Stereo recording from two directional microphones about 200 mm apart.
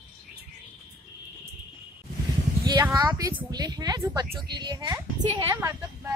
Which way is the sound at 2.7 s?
20° right (ahead or behind).